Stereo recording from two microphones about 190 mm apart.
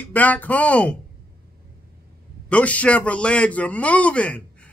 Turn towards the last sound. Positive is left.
turn(degrees=5)  # may be behind; listen again after turning